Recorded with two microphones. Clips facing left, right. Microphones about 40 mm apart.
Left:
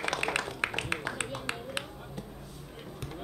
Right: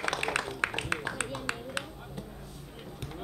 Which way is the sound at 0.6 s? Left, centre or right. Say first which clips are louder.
Right 1 dB; left.